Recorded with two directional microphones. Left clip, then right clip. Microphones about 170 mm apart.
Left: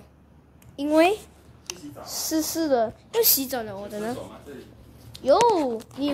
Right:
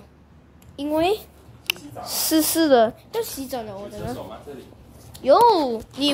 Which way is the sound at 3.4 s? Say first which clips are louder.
Even; 20° left (ahead or behind).